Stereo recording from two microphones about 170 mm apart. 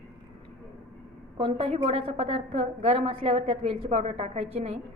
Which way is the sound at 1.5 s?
35° right (ahead or behind).